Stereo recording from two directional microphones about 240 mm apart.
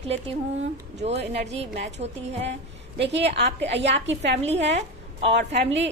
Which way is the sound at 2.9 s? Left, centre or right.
Right.